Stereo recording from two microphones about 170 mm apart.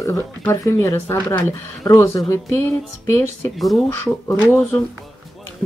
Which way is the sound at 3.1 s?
15° left (ahead or behind).